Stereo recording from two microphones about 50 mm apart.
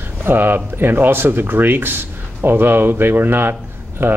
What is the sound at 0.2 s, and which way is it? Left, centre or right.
Speech, right.